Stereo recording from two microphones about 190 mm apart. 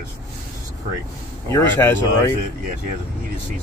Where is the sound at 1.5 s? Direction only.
15° left (ahead or behind).